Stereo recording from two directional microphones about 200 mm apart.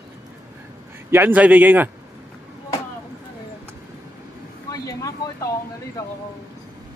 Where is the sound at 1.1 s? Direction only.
10° right (ahead or behind).